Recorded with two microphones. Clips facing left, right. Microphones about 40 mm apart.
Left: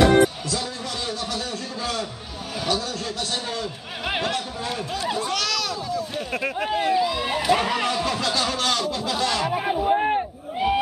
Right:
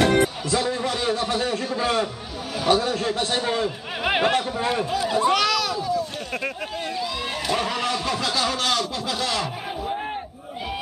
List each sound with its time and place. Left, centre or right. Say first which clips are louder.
0.5 s a man's voice: right 5 dB; right
5.1 s a sound: right 7 dB; centre
6.7 s speech: left 7 dB; centre
9.5 s crowd: left 8 dB; left